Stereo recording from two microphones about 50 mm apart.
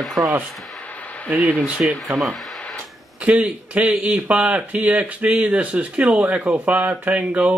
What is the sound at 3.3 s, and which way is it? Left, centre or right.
Speech, right.